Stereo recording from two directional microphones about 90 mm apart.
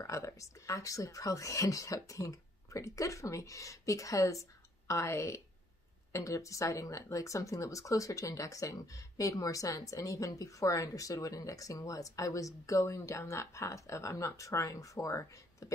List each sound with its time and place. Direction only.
0.0 s speech: 35° left (ahead or behind)